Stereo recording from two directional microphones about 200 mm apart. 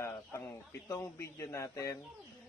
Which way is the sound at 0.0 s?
15° left (ahead or behind).